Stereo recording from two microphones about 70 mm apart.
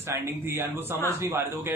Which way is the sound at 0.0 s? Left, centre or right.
Right.